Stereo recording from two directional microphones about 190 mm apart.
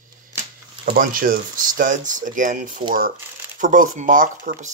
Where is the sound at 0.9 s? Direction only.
50° right (ahead or behind).